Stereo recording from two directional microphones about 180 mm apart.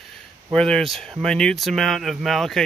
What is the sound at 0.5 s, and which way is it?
Speech, 5° left (ahead or behind).